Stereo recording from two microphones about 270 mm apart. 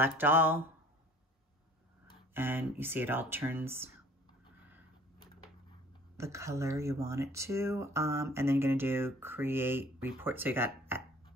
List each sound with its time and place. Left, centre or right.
0.0 s speech: centre
2.3 s speech: centre
6.1 s speech: centre